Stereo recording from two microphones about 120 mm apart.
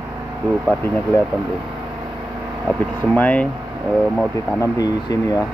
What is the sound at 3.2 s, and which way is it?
Speech, 10° left (ahead or behind).